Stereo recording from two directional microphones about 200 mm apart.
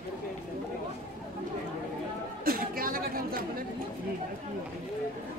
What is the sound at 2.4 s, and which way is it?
Chatter, 45° right (ahead or behind).